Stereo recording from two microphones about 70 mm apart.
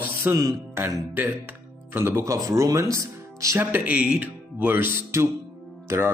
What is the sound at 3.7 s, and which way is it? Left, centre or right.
Speech, right.